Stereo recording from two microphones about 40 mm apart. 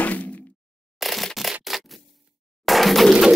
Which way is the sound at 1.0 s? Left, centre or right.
Centre.